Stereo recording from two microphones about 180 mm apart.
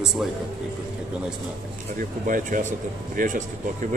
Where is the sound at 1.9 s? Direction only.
50° right (ahead or behind).